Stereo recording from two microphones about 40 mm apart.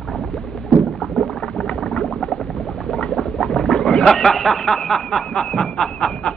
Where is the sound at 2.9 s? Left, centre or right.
Centre.